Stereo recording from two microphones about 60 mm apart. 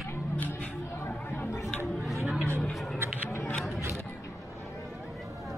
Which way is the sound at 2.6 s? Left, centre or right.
Centre.